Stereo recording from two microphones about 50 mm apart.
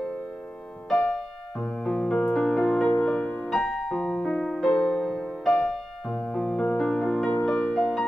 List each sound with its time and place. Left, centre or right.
0.8 s music: centre
3.4 s music: centre
3.9 s piano: centre
4.6 s music: centre
4.8 s music: centre